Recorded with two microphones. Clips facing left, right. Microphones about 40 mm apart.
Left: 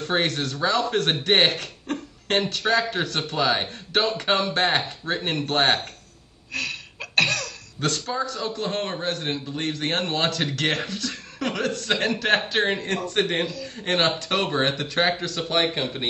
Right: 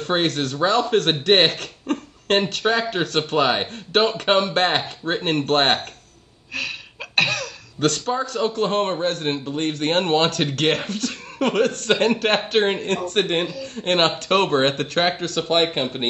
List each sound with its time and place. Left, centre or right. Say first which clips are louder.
0.0 s a man's voice: right 3 dB; right
6.5 s throat clearing: right 1 dB; centre
7.8 s a man's voice: right 4 dB; right